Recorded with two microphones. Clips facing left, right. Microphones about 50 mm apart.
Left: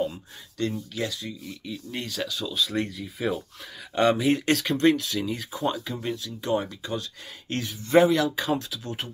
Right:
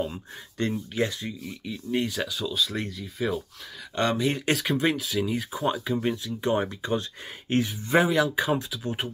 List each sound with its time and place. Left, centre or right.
0.1 s speech: right
1.6 s speech: centre
2.4 s speech: centre
4.5 s speech: centre